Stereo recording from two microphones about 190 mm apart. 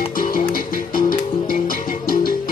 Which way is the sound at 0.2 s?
50° left (ahead or behind).